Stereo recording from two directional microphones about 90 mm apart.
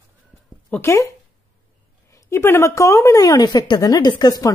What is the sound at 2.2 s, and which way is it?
Speech, 25° left (ahead or behind).